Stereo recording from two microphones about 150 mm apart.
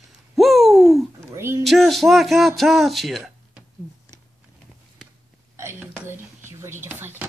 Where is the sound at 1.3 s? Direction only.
15° right (ahead or behind).